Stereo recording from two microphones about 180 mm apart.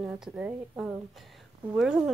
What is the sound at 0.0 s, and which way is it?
A woman's voice, 5° right (ahead or behind).